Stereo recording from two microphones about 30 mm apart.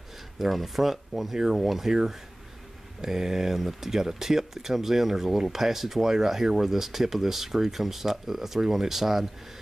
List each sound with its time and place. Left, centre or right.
0.5 s speech: centre
1.9 s speech: centre